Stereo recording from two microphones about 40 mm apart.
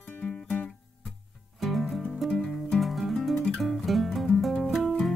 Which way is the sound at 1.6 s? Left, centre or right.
Centre.